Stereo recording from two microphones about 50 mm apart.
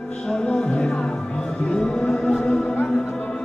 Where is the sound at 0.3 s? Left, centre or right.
Centre.